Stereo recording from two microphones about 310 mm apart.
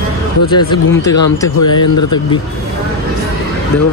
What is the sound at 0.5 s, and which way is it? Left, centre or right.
Speech, centre.